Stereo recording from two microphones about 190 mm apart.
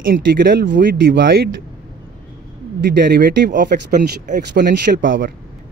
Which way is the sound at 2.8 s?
55° right (ahead or behind).